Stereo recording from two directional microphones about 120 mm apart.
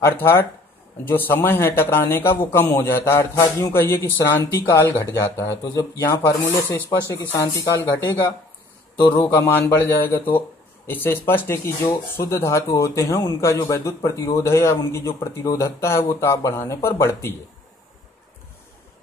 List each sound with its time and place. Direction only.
0.0 s a man's voice: 20° left (ahead or behind)